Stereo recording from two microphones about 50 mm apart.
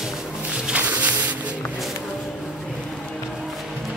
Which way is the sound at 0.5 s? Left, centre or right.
Centre.